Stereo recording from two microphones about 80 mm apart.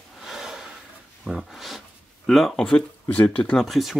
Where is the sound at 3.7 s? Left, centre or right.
Centre.